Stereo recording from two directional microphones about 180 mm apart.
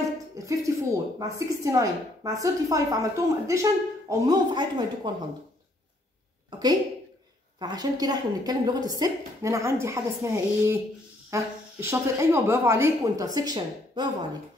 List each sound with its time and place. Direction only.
0.5 s a woman's voice: 15° right (ahead or behind)
6.5 s a sound: 20° right (ahead or behind)
7.5 s a woman's voice: 20° right (ahead or behind)